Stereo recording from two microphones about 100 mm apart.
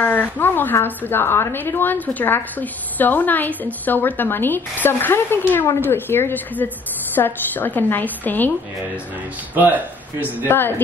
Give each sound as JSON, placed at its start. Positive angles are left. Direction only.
{"t": 0.0, "sound": "a woman's voice", "side_deg": 20}
{"t": 9.6, "sound": "speech", "side_deg": -15}
{"t": 10.5, "sound": "a woman's voice", "side_deg": 20}